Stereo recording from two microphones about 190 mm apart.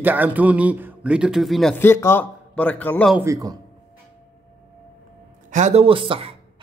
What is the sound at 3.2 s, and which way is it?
Speech, 15° right (ahead or behind).